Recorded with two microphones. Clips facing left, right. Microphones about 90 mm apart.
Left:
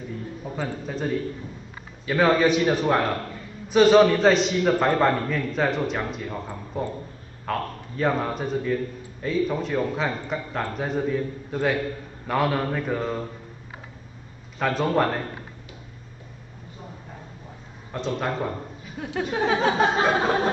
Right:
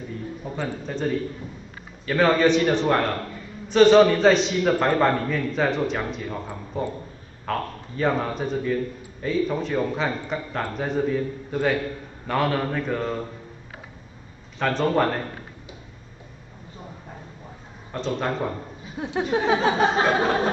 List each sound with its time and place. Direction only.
0.4 s a man's voice: 5° left (ahead or behind)
14.6 s a man's voice: 5° left (ahead or behind)
17.9 s a man's voice: centre (ahead or behind)
18.9 s a sound: 20° right (ahead or behind)